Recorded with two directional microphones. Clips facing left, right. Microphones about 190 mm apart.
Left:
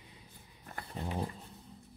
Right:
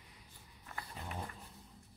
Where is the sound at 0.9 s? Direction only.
30° left (ahead or behind).